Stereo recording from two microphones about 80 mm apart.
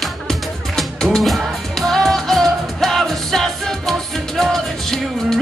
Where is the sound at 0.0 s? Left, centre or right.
Centre.